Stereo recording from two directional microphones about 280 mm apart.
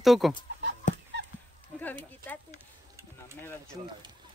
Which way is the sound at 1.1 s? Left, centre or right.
Right.